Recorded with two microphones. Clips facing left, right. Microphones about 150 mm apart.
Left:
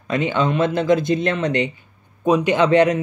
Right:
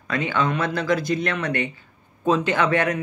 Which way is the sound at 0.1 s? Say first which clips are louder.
Left 4 dB; 20° left (ahead or behind).